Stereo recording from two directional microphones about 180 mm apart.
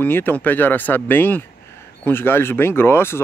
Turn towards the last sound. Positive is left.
turn(degrees=15)  # may be behind; listen again after turning